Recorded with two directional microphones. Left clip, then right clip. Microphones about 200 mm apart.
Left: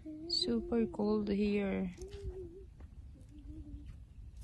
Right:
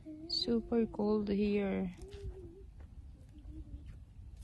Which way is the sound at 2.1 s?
40° left (ahead or behind).